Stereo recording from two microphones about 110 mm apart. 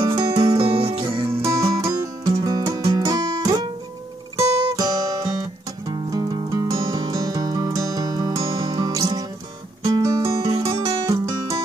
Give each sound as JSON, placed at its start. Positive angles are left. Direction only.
{"t": 0.0, "sound": "music", "side_deg": -50}
{"t": 1.3, "sound": "music", "side_deg": -25}